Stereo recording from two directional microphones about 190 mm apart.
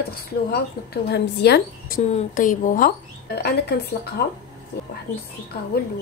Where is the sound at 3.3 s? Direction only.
55° left (ahead or behind).